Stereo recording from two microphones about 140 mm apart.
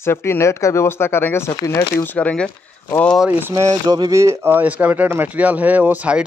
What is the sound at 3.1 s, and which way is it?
Speech, 10° right (ahead or behind).